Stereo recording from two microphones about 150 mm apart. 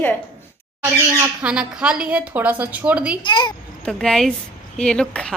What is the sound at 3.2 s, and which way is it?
Speech, 30° left (ahead or behind).